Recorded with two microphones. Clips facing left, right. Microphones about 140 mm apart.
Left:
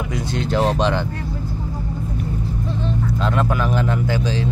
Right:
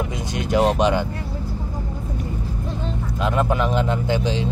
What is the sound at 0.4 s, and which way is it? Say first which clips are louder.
Speech: right 1 dB; 15° right (ahead or behind).